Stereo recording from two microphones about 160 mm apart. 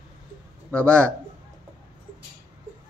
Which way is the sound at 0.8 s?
15° right (ahead or behind).